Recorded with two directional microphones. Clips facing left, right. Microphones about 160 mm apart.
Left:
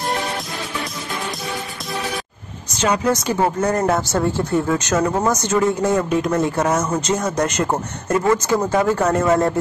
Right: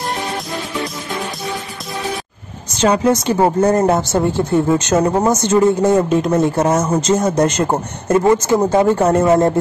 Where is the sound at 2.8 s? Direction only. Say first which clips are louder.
Right 5 dB; 30° right (ahead or behind).